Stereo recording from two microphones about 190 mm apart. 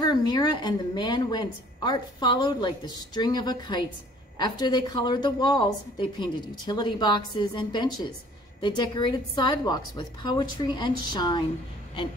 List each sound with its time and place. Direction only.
0.0 s a woman's voice: 20° left (ahead or behind)